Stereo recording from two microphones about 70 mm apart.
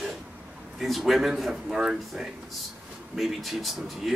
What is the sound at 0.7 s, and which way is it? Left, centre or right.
A man's voice, centre.